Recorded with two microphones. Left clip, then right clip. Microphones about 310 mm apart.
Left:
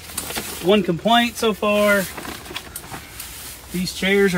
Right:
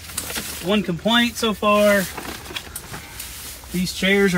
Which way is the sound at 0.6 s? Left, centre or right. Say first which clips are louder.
Left 5 dB; left.